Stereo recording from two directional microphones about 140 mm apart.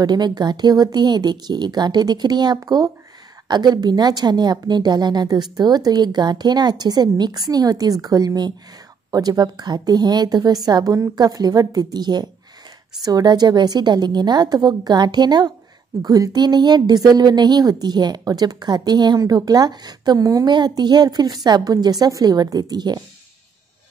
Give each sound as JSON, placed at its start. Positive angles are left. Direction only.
{"t": 0.0, "sound": "a woman's voice", "side_deg": -30}